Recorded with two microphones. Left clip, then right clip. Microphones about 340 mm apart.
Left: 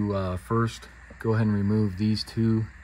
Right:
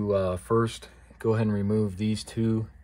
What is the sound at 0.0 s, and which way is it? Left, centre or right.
Speech, right.